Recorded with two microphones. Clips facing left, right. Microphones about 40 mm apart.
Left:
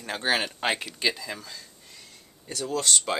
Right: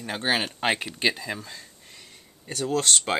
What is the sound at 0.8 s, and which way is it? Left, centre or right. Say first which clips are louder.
Speech: right 2 dB; right.